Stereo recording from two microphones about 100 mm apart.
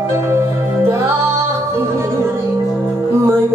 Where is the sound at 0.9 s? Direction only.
25° right (ahead or behind).